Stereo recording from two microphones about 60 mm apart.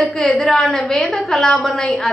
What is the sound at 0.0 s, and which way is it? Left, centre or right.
A woman's voice, centre.